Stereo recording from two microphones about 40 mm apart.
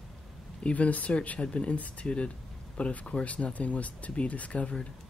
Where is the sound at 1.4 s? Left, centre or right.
Left.